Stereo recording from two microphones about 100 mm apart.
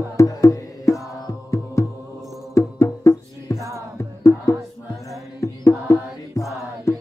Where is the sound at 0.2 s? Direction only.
30° left (ahead or behind).